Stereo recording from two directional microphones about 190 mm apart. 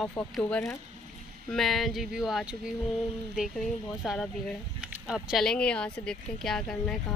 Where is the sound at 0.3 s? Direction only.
5° left (ahead or behind).